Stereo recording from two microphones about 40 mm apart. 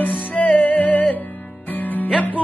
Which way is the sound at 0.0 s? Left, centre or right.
Left.